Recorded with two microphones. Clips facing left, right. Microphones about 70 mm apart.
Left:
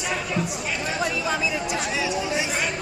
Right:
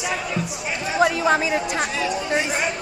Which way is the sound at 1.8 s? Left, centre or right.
Centre.